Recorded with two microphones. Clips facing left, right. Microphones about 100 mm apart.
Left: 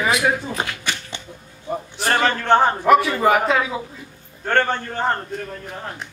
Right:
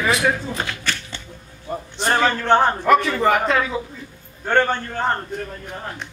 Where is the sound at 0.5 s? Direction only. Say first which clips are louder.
Even; 15° left (ahead or behind).